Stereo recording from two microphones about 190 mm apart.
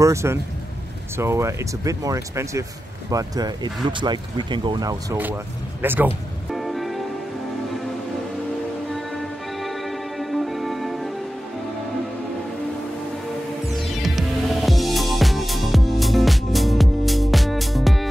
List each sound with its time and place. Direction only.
0.0 s speech: 15° right (ahead or behind)
5.1 s speech: 10° right (ahead or behind)
6.5 s music: centre (ahead or behind)
8.9 s music: centre (ahead or behind)
13.7 s music: centre (ahead or behind)